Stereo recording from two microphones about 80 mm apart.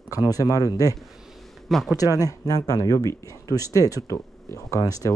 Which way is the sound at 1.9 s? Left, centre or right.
Left.